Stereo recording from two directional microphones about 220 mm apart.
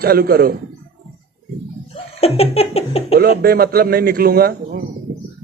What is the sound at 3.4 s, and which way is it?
A man's voice, 45° right (ahead or behind).